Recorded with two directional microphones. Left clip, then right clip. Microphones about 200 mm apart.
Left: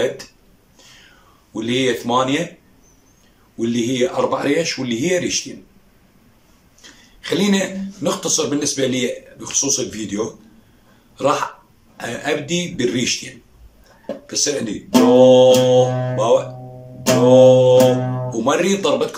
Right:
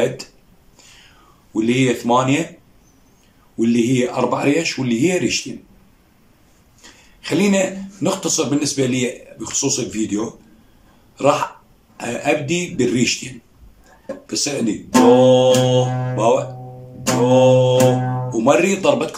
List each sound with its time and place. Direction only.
1.5 s speech: 10° right (ahead or behind)
3.5 s speech: 10° right (ahead or behind)
7.2 s speech: 10° right (ahead or behind)
15.8 s speech: 5° left (ahead or behind)
16.2 s speech: 10° right (ahead or behind)
18.0 s music: 5° left (ahead or behind)
18.3 s speech: 10° right (ahead or behind)